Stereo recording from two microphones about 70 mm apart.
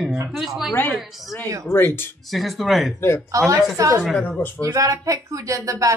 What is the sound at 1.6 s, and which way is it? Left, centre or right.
Speech, left.